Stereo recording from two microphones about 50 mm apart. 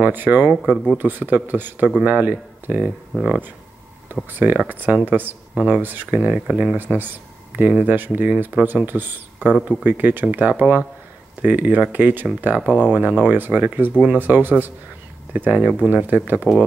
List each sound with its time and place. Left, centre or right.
0.0 s speech: right
3.1 s speech: centre
4.1 s speech: right
6.8 s speech: right